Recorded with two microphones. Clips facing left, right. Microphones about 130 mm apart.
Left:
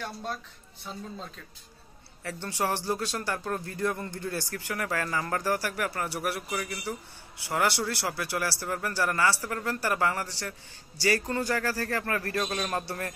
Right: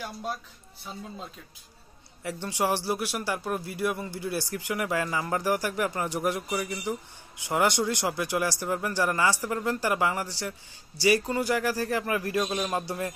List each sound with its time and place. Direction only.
0.0 s a man's voice: 10° right (ahead or behind)